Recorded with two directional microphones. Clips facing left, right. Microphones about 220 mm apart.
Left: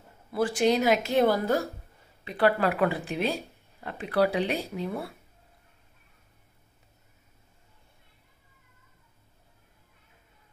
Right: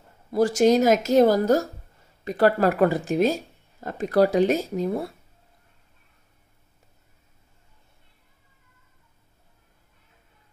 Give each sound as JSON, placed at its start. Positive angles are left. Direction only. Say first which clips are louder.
{"t": 0.3, "sound": "speech", "louder": "right 6 dB", "side_deg": -40}